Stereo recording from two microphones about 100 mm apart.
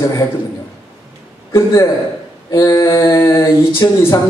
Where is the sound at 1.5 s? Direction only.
30° left (ahead or behind).